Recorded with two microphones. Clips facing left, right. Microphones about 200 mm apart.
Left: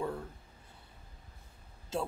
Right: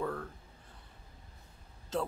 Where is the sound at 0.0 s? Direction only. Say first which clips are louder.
Even; 15° left (ahead or behind).